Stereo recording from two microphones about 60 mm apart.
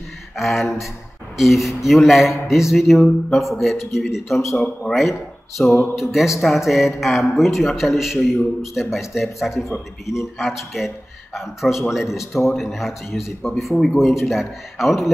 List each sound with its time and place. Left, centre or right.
0.4 s a man's voice: centre
5.6 s speech: centre
5.9 s a man's voice: centre